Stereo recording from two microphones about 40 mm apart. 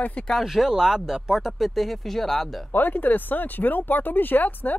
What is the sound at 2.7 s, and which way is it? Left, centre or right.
Speech, left.